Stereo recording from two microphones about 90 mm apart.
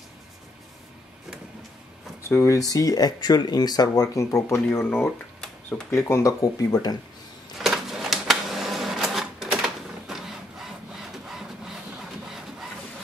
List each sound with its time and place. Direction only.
2.2 s speech: 30° left (ahead or behind)
5.9 s speech: 30° left (ahead or behind)
6.4 s speech: 45° left (ahead or behind)
7.5 s a sound: 5° right (ahead or behind)